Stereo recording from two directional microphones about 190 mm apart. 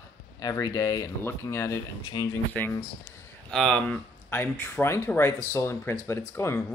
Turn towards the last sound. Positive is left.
turn(degrees=15)  # may be behind; listen again after turning